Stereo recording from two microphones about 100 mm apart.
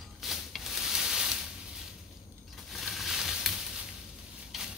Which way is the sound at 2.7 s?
Centre (ahead or behind).